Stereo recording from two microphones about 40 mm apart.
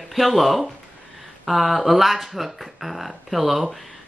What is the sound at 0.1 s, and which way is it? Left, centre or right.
Speech, centre.